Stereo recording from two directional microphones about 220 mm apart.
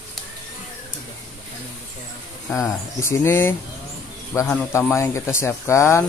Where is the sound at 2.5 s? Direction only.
10° left (ahead or behind).